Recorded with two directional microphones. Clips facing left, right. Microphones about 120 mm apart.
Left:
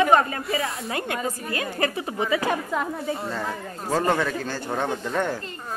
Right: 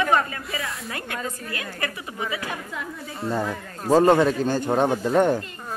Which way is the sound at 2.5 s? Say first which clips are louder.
Left 7 dB; 55° left (ahead or behind).